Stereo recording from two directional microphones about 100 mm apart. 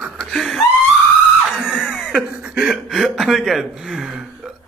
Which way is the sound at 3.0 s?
Centre (ahead or behind).